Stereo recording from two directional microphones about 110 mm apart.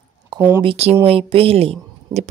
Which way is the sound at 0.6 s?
65° right (ahead or behind).